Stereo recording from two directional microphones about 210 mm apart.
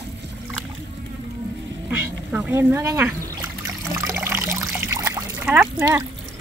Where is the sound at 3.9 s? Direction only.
10° right (ahead or behind).